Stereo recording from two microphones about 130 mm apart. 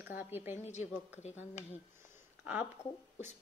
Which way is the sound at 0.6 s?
60° left (ahead or behind).